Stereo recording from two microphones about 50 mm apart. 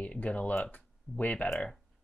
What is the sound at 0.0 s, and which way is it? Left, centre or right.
Speech, left.